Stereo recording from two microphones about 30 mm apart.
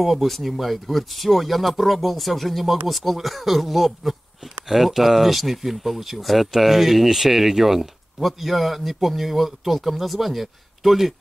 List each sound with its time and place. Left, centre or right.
0.0 s speech: centre